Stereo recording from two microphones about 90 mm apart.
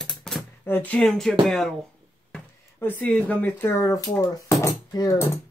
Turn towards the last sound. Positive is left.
turn(degrees=35)  # may be behind; listen again after turning